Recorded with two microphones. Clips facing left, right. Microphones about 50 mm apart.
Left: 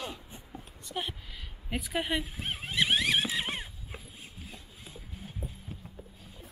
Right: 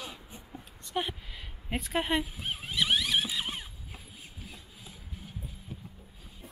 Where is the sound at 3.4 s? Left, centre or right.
Left.